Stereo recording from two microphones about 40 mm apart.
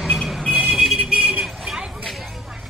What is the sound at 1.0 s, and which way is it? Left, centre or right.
Vehicle, right.